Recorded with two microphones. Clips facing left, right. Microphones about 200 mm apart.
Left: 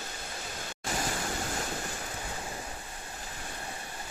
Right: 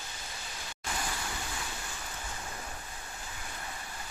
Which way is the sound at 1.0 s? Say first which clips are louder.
Left 6 dB; 45° left (ahead or behind).